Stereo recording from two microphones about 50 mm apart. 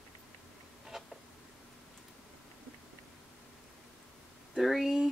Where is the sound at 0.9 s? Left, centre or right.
Centre.